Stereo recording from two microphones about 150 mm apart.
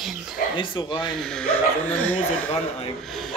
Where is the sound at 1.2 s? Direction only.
5° left (ahead or behind).